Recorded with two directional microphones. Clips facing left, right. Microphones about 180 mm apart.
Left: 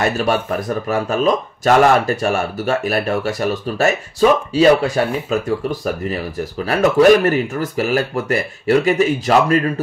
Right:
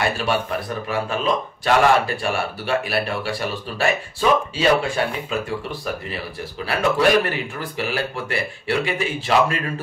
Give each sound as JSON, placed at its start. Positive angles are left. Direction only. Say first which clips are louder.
{"t": 0.0, "sound": "speech", "louder": "left 4 dB", "side_deg": 45}